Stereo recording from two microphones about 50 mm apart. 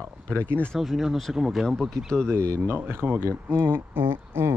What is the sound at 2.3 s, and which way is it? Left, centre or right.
Speech, right.